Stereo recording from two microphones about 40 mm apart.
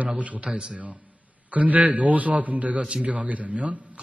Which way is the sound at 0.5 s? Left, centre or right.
Right.